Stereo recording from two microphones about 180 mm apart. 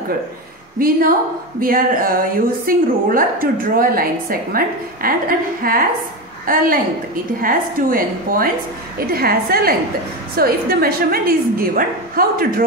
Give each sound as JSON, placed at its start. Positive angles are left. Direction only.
{"t": 0.7, "sound": "a woman's voice", "side_deg": -55}